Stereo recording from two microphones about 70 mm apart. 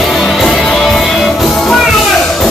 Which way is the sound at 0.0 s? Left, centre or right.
Centre.